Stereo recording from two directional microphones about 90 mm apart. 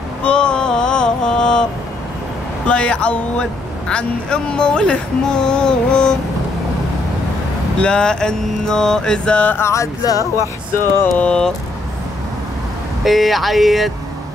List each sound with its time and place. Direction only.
0.2 s music: 10° left (ahead or behind)
2.6 s speech: 10° left (ahead or behind)
7.8 s speech: 10° left (ahead or behind)
9.6 s a sound: 35° left (ahead or behind)
11.1 s speech: 10° left (ahead or behind)
13.0 s speech: centre (ahead or behind)